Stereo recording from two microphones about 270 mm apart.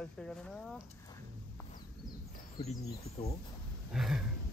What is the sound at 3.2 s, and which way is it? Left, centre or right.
Speech, left.